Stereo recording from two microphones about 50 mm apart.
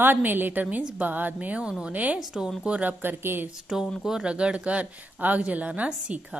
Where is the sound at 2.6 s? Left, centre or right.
Right.